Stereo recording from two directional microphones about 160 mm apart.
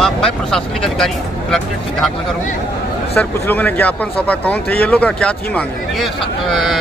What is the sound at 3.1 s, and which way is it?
Speech, 10° left (ahead or behind).